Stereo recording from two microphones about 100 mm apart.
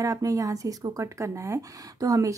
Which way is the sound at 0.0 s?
35° right (ahead or behind).